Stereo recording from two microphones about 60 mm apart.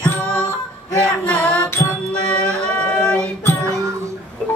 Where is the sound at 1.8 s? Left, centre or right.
Left.